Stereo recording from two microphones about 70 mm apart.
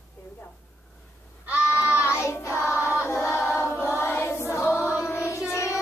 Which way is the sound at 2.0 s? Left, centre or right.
Left.